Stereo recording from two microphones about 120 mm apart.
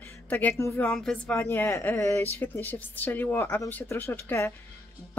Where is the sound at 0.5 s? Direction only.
25° left (ahead or behind).